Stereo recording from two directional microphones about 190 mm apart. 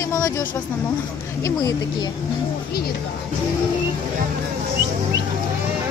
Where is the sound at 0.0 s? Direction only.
15° left (ahead or behind).